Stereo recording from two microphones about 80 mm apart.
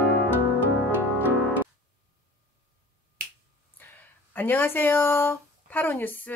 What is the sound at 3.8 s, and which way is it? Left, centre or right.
Speech, left.